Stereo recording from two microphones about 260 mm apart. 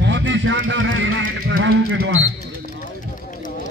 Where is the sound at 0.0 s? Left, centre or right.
Right.